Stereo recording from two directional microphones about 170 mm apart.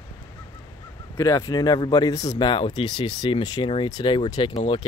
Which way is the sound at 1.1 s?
20° left (ahead or behind).